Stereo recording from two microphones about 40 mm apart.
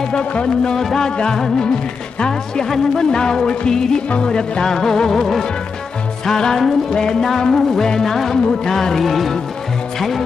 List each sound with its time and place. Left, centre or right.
0.1 s music: left
0.7 s music: centre